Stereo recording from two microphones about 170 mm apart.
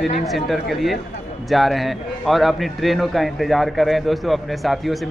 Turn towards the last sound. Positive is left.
turn(degrees=0)  # may be behind; listen again after turning